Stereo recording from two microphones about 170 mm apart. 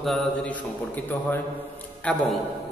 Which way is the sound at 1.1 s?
15° left (ahead or behind).